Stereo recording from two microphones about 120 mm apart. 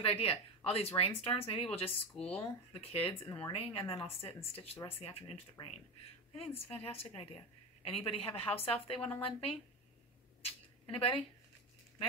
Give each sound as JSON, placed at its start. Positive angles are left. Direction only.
{"t": 0.0, "sound": "speech", "side_deg": 55}
{"t": 3.3, "sound": "speech", "side_deg": 20}
{"t": 3.5, "sound": "a woman's voice", "side_deg": 55}
{"t": 10.4, "sound": "a sound", "side_deg": 50}